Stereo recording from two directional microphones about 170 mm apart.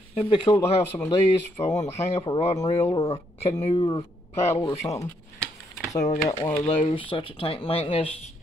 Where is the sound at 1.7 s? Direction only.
40° left (ahead or behind).